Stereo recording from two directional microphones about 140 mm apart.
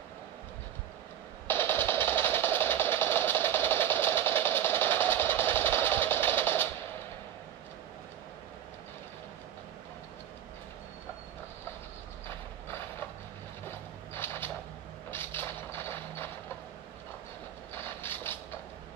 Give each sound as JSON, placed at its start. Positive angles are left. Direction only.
{"t": 1.5, "sound": "music", "side_deg": 15}
{"t": 13.7, "sound": "vehicle", "side_deg": 15}
{"t": 17.7, "sound": "vehicle", "side_deg": 15}